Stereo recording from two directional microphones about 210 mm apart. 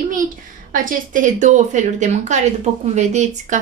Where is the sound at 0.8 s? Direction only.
40° right (ahead or behind).